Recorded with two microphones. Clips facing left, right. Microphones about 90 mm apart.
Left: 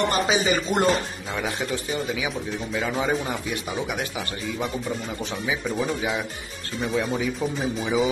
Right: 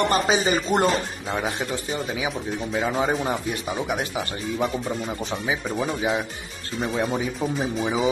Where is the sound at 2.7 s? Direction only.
25° right (ahead or behind).